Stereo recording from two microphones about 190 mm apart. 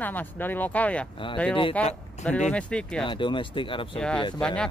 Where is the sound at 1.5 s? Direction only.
25° left (ahead or behind).